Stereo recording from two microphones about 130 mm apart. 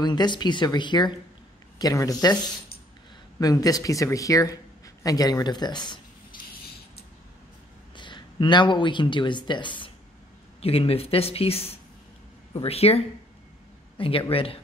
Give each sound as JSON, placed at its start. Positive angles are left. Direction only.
{"t": 0.0, "sound": "speech", "side_deg": 35}
{"t": 3.3, "sound": "speech", "side_deg": 25}
{"t": 7.9, "sound": "speech", "side_deg": 35}